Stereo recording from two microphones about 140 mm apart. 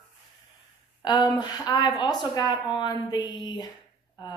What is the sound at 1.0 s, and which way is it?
A woman's voice, 30° left (ahead or behind).